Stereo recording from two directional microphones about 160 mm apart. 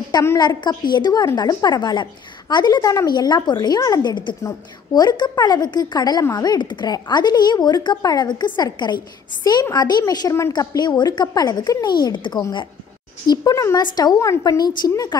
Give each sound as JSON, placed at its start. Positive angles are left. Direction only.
{"t": 0.2, "sound": "speech", "side_deg": 20}